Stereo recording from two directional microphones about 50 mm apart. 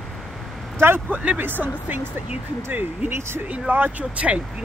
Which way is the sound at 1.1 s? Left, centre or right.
Right.